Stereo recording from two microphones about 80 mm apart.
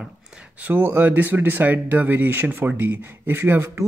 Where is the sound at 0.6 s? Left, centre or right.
Right.